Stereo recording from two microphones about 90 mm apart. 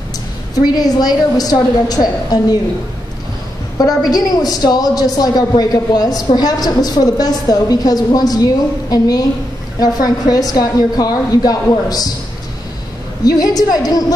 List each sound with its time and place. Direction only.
0.6 s a woman's voice: 45° left (ahead or behind)
3.7 s a woman's voice: 45° left (ahead or behind)
13.2 s a woman's voice: 45° left (ahead or behind)